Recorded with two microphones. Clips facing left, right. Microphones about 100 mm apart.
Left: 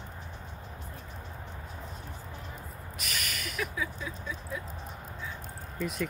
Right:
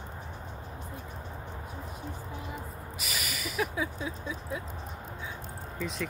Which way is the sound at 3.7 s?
25° right (ahead or behind).